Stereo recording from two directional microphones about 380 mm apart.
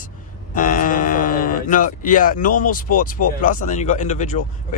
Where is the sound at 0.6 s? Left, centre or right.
Left.